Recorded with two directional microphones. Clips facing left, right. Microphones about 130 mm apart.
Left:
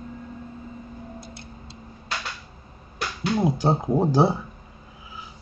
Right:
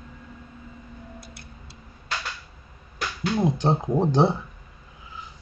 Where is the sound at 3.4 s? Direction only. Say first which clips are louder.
Even; 5° left (ahead or behind).